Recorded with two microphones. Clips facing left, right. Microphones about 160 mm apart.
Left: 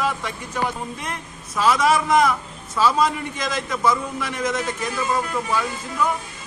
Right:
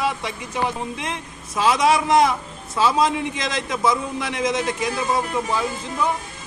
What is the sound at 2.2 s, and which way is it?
Speech, 25° right (ahead or behind).